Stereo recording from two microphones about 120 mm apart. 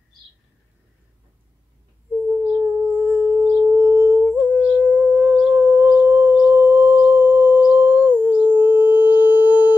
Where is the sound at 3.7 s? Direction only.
20° right (ahead or behind).